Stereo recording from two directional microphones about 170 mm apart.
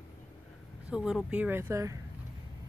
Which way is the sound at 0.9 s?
5° right (ahead or behind).